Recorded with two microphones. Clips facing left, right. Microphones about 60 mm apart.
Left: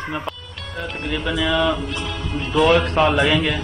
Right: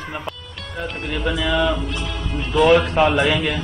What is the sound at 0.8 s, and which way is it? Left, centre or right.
Speech, centre.